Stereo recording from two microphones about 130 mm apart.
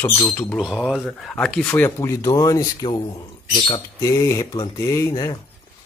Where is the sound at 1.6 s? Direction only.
15° left (ahead or behind).